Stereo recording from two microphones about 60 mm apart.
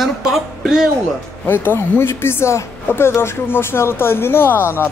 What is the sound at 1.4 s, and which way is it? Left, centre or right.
A woman's voice, left.